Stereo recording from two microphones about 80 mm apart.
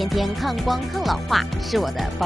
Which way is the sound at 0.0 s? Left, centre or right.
Centre.